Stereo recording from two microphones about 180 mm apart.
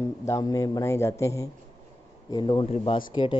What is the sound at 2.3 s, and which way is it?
Speech, 25° left (ahead or behind).